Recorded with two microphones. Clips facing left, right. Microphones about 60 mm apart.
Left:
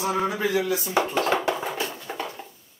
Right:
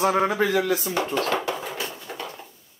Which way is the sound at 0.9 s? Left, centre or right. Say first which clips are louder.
Left 2 dB; centre.